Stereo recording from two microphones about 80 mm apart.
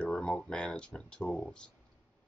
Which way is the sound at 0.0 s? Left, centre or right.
Centre.